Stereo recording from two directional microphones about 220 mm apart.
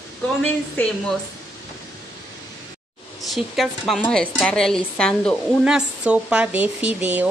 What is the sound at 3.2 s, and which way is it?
A woman's voice, centre (ahead or behind).